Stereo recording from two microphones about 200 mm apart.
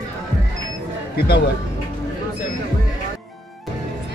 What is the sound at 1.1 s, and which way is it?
Speech, 55° left (ahead or behind).